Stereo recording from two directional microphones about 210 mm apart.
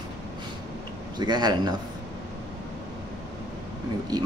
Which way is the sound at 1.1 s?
20° right (ahead or behind).